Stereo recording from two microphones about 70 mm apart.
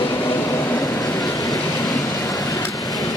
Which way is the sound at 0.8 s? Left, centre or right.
Left.